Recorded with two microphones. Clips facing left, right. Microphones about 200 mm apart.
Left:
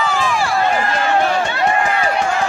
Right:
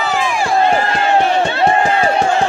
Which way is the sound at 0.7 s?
30° right (ahead or behind).